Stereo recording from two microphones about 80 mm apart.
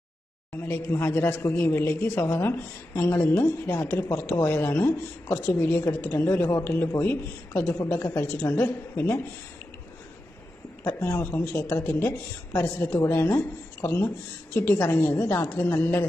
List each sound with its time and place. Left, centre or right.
0.7 s a woman's voice: left
10.8 s a woman's voice: left
13.1 s a woman's voice: left